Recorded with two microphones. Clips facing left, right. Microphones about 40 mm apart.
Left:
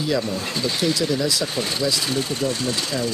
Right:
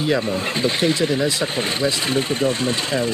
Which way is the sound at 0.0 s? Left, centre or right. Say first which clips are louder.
Right 3 dB; right.